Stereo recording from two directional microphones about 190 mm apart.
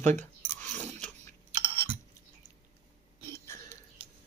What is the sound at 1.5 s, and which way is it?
Chewing, 25° right (ahead or behind).